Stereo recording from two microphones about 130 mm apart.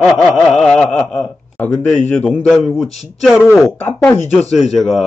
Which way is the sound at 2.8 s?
Centre (ahead or behind).